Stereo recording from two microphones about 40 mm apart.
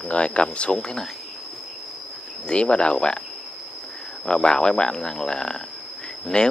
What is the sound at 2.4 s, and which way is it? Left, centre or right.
Speech, left.